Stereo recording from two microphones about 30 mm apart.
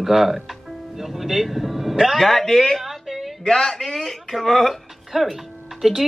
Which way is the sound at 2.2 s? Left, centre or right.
Centre.